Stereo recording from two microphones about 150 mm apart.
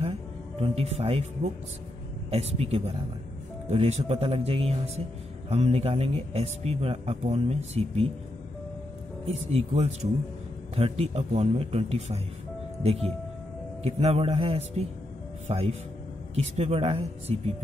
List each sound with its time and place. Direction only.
0.0 s music: 40° right (ahead or behind)
2.3 s speech: 45° right (ahead or behind)
9.2 s speech: 45° right (ahead or behind)
13.8 s speech: 45° right (ahead or behind)